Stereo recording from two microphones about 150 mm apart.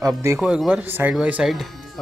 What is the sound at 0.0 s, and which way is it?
Speech, 20° right (ahead or behind).